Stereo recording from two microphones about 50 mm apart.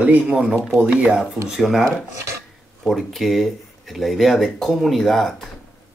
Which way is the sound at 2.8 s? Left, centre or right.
Centre.